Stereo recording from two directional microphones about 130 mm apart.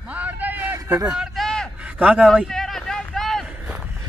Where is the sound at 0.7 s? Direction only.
25° right (ahead or behind).